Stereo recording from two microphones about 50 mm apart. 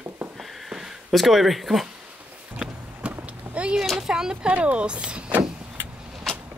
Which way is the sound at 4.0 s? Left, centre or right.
Centre.